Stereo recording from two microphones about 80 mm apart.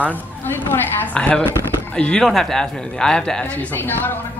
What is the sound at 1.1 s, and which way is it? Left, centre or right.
Speech, centre.